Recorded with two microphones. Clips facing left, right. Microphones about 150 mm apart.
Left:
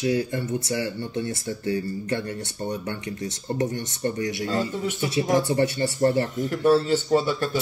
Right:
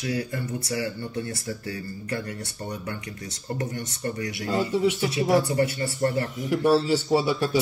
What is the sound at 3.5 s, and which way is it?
Speech, 25° left (ahead or behind).